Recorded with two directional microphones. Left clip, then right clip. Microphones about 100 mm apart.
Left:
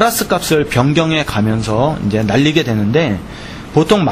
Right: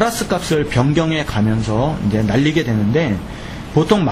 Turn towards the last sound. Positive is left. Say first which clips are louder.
# left 3 dB
turn(degrees=40)  # may be behind; listen again after turning